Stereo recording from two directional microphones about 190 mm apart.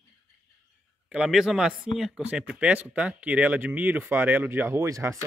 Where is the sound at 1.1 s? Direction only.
5° right (ahead or behind).